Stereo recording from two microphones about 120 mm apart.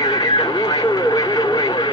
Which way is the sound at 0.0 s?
35° left (ahead or behind).